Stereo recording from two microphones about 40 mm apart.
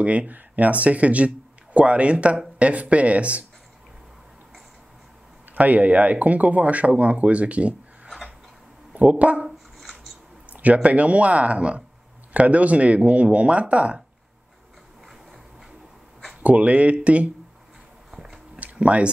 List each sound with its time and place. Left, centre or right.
0.0 s speech: right
5.5 s speech: right
9.2 s speech: right
9.8 s dishes: centre
10.5 s speech: right
16.4 s speech: right
18.1 s biting: centre
18.6 s a sound: right